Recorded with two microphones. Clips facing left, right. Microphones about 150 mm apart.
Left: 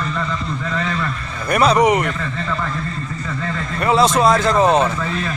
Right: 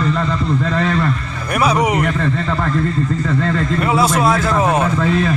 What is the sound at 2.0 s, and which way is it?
Speech, 55° right (ahead or behind).